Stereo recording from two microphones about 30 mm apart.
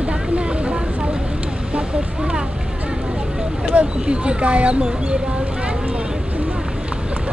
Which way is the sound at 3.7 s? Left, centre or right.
Right.